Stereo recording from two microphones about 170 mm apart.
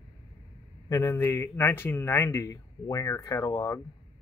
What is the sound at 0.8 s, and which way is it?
A man's voice, 20° left (ahead or behind).